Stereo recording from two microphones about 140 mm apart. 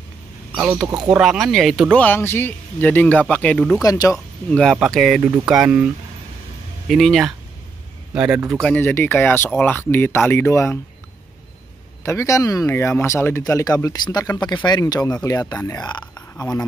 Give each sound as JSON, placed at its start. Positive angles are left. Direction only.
{"t": 0.6, "sound": "a man's voice", "side_deg": -10}
{"t": 0.8, "sound": "speech", "side_deg": -25}
{"t": 1.2, "sound": "speech", "side_deg": 0}
{"t": 2.0, "sound": "speech", "side_deg": 15}
{"t": 3.8, "sound": "speech", "side_deg": 25}
{"t": 4.5, "sound": "a man's voice", "side_deg": 5}
{"t": 6.9, "sound": "a man's voice", "side_deg": 0}
{"t": 8.5, "sound": "speech", "side_deg": 10}
{"t": 12.0, "sound": "speech", "side_deg": 20}